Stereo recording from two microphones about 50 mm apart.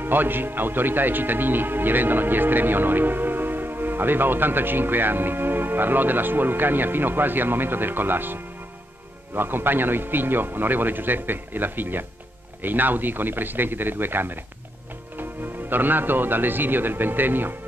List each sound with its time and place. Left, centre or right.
0.0 s speech: right
15.7 s speech: right